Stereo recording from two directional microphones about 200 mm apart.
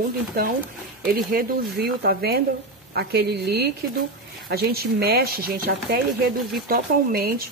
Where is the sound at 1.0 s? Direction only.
45° right (ahead or behind).